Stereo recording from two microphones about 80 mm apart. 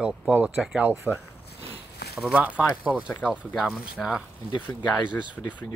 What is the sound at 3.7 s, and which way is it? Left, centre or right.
Speech, centre.